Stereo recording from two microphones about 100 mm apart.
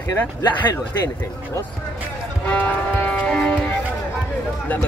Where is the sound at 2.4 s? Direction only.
15° left (ahead or behind).